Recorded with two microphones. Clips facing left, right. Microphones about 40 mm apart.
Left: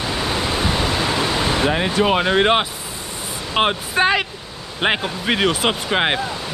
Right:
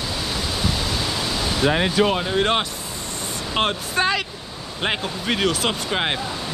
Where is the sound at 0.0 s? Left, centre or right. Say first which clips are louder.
Left 5 dB; left.